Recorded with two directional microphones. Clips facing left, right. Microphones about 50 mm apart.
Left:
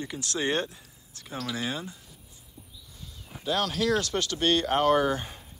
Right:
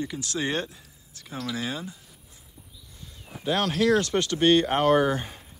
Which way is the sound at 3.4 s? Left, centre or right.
Right.